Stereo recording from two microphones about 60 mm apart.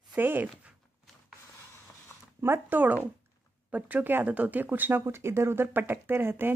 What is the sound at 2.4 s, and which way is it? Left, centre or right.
Speech, right.